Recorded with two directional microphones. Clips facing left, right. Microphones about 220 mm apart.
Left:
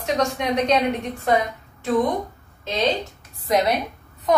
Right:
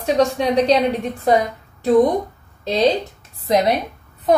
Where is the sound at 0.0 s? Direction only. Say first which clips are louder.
Right 6 dB; 35° right (ahead or behind).